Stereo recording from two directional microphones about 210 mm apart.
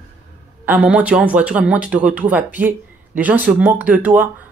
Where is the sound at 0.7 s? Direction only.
5° right (ahead or behind).